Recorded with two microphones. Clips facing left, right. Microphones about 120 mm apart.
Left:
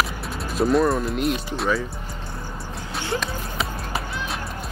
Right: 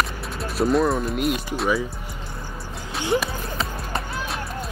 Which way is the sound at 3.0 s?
15° right (ahead or behind).